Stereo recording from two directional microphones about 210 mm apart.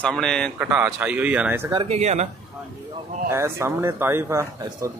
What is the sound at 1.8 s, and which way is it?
Speech, 30° right (ahead or behind).